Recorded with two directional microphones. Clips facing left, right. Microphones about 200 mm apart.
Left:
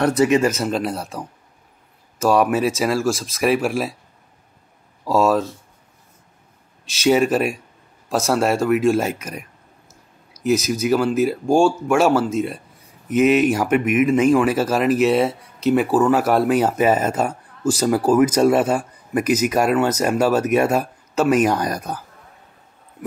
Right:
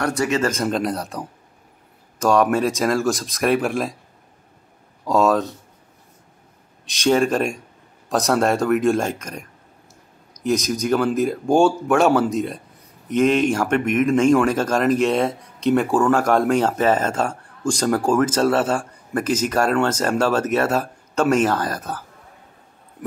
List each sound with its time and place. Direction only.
0.0 s speech: 20° left (ahead or behind)
0.5 s speech: 5° left (ahead or behind)
5.0 s speech: centre (ahead or behind)
6.9 s speech: 5° left (ahead or behind)